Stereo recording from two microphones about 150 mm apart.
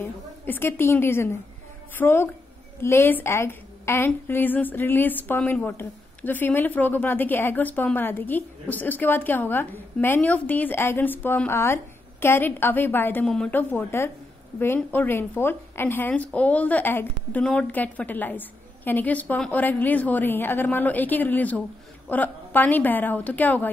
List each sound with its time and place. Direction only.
0.5 s a woman's voice: 15° left (ahead or behind)